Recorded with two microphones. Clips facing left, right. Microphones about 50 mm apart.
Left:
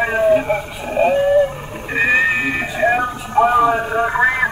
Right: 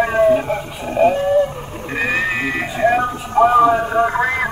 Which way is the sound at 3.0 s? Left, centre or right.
Centre.